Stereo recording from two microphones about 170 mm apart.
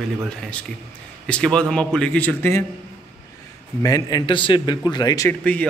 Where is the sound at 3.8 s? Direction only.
20° left (ahead or behind).